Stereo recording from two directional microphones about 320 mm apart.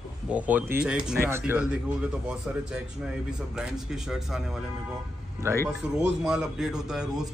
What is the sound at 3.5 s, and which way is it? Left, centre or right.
Speech, centre.